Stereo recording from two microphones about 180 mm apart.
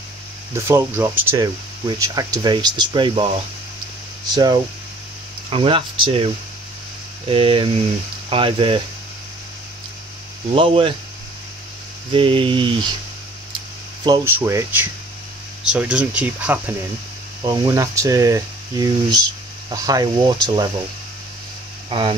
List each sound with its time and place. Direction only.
0.6 s speech: 15° right (ahead or behind)
4.3 s speech: 20° right (ahead or behind)
10.5 s speech: 30° right (ahead or behind)
12.1 s speech: 30° right (ahead or behind)
14.0 s speech: 15° right (ahead or behind)
17.4 s speech: 20° right (ahead or behind)
21.8 s speech: 30° right (ahead or behind)